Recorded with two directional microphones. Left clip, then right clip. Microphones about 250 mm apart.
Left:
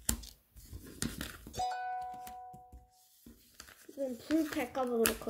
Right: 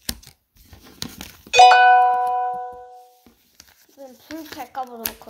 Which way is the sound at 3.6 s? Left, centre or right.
Centre.